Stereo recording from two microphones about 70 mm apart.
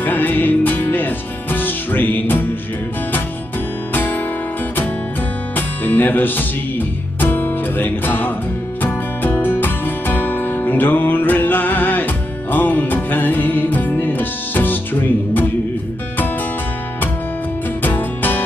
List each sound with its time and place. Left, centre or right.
0.0 s music: left
3.9 s music: left
5.6 s music: left
17.8 s music: left